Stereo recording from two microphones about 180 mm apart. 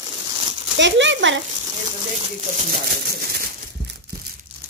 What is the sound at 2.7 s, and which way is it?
Speech, 55° right (ahead or behind).